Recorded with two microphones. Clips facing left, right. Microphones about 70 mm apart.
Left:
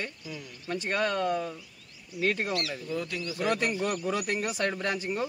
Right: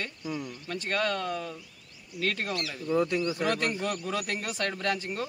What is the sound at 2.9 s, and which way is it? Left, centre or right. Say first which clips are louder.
Speech: right 10 dB; right.